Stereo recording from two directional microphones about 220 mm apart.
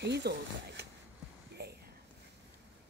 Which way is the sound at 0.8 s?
45° right (ahead or behind).